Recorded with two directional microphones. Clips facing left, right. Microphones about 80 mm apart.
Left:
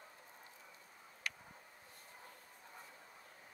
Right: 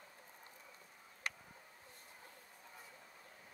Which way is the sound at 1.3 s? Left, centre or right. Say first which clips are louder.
Right 1 dB; right.